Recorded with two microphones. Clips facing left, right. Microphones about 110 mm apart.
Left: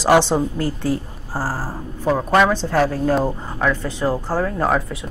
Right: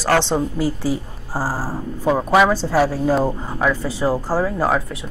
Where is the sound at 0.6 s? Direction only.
5° right (ahead or behind).